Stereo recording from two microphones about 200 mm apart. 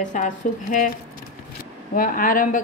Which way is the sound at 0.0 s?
40° left (ahead or behind).